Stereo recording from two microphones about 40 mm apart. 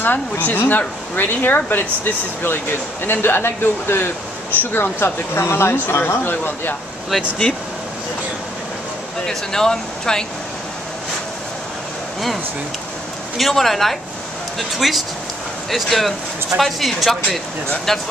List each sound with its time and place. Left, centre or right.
0.0 s a woman's voice: left
3.1 s speech: left
5.0 s speech: left
9.3 s speech: centre
13.4 s speech: centre